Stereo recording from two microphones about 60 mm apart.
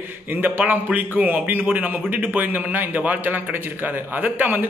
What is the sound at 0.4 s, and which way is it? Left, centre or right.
A man's voice, right.